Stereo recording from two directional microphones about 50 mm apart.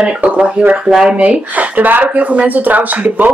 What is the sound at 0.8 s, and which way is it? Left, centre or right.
Speech, centre.